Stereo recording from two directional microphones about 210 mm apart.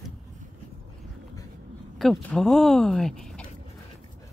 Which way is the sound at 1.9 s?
Centre (ahead or behind).